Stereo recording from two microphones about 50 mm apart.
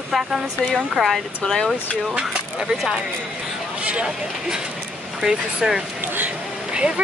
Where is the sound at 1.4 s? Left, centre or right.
Centre.